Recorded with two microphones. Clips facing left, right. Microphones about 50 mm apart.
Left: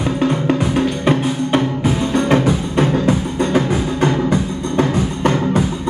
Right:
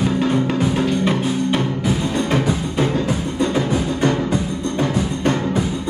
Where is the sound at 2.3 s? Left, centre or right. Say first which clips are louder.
Left 4 dB; left.